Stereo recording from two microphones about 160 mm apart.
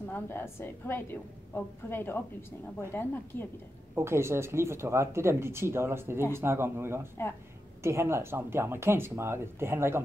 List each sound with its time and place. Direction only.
0.0 s a woman's voice: 15° left (ahead or behind)
3.9 s speech: 15° right (ahead or behind)